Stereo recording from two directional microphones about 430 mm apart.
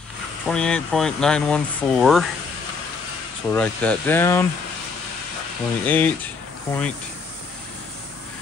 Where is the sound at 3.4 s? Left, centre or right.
Centre.